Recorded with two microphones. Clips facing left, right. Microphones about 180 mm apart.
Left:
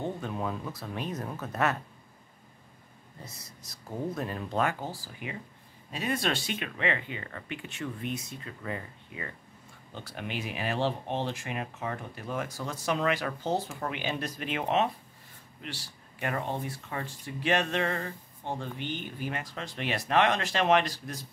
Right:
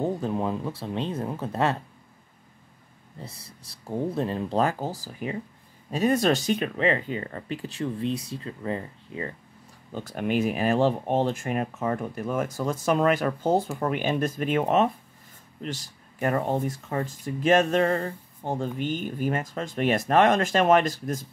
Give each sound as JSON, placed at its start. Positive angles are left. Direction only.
{"t": 0.0, "sound": "speech", "side_deg": -35}
{"t": 3.2, "sound": "speech", "side_deg": -30}
{"t": 9.9, "sound": "speech", "side_deg": -45}